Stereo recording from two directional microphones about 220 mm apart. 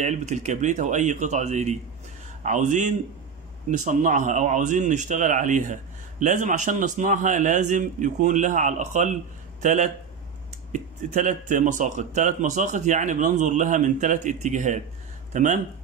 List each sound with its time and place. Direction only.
0.0 s a man's voice: 30° right (ahead or behind)